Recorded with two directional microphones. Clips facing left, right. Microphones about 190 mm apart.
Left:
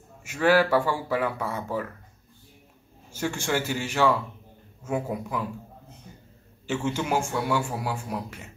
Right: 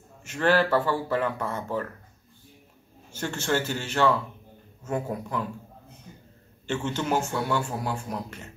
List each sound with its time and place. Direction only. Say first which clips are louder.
0.2 s speech: left 2 dB; 10° left (ahead or behind)
3.1 s speech: even; 10° left (ahead or behind)
6.7 s speech: left 1 dB; 10° left (ahead or behind)